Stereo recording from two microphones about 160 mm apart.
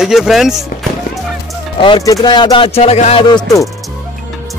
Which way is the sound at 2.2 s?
30° left (ahead or behind).